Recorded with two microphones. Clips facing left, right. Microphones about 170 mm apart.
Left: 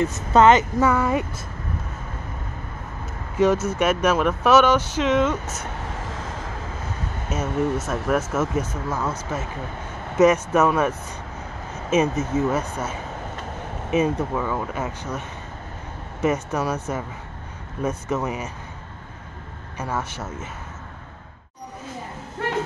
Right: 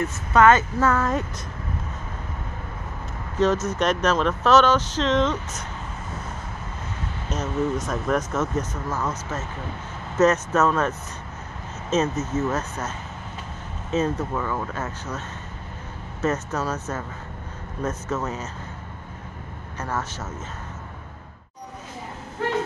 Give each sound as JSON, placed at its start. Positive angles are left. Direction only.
{"t": 0.0, "sound": "speech", "side_deg": 20}
{"t": 3.3, "sound": "speech", "side_deg": 10}
{"t": 5.9, "sound": "vehicle", "side_deg": 90}
{"t": 7.2, "sound": "speech", "side_deg": 5}
{"t": 19.8, "sound": "speech", "side_deg": 10}